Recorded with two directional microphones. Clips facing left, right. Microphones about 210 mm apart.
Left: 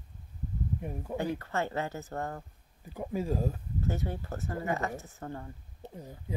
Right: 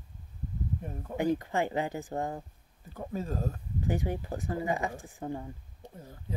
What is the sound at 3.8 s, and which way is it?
Speech, 15° right (ahead or behind).